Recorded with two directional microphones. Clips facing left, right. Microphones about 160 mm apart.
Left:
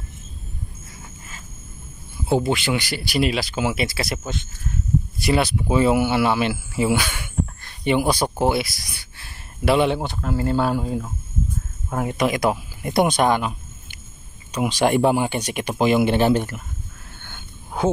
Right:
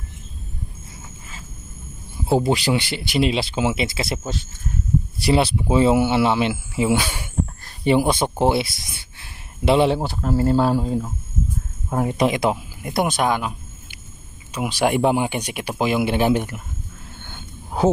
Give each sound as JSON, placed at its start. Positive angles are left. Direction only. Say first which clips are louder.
{"t": 2.3, "sound": "speech", "louder": "right 2 dB", "side_deg": -35}
{"t": 5.2, "sound": "speech", "louder": "right 2 dB", "side_deg": -30}
{"t": 7.0, "sound": "speech", "louder": "right 1 dB", "side_deg": -30}
{"t": 9.9, "sound": "speech", "louder": "right 3 dB", "side_deg": -5}
{"t": 10.6, "sound": "speech", "louder": "right 2 dB", "side_deg": -30}
{"t": 11.9, "sound": "speech", "louder": "right 2 dB", "side_deg": -25}
{"t": 12.8, "sound": "speech", "louder": "left 3 dB", "side_deg": -5}